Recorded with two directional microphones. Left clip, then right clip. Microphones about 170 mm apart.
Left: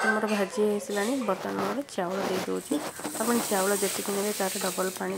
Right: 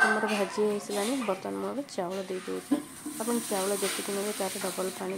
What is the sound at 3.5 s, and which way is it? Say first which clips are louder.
Speech: left 3 dB; 20° left (ahead or behind).